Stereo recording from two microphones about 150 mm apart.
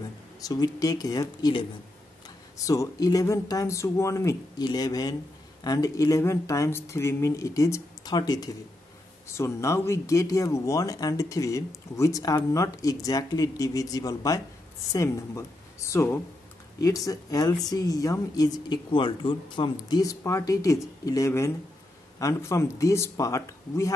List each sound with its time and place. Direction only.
0.4 s speech: 25° left (ahead or behind)